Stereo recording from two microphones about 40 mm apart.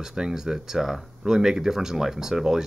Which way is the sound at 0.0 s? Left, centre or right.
Centre.